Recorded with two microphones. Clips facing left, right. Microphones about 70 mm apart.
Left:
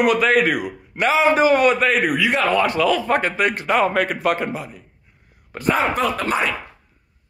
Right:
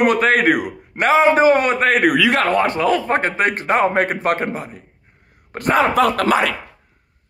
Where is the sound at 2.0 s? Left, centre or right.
Right.